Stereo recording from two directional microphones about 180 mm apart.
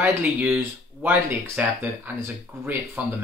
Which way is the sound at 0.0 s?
5° right (ahead or behind).